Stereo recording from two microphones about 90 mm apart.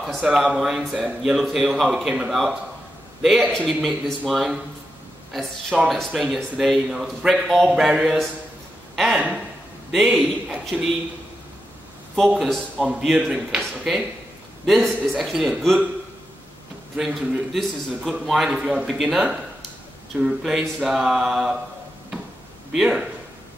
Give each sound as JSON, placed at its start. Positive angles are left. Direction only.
{"t": 0.0, "sound": "a man's voice", "side_deg": -10}
{"t": 12.4, "sound": "speech", "side_deg": 0}
{"t": 16.9, "sound": "speech", "side_deg": 0}
{"t": 20.2, "sound": "speech", "side_deg": -5}
{"t": 22.8, "sound": "speech", "side_deg": -10}